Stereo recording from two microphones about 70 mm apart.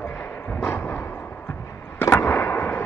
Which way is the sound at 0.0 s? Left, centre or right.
Left.